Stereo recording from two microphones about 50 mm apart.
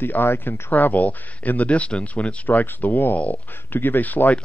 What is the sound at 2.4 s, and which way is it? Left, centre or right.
Speech, left.